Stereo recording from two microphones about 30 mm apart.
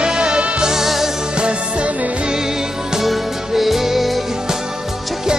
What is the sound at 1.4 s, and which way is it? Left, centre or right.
Music, right.